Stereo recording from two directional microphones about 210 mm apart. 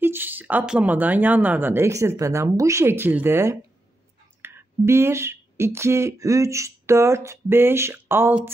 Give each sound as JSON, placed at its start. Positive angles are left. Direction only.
{"t": 0.0, "sound": "speech", "side_deg": -10}